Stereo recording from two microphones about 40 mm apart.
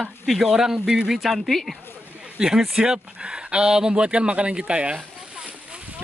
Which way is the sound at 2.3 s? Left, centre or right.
Centre.